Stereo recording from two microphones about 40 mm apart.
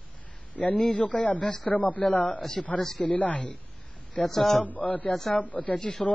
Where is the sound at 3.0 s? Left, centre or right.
Left.